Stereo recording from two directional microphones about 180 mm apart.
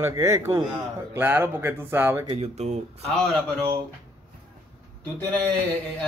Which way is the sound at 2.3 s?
35° right (ahead or behind).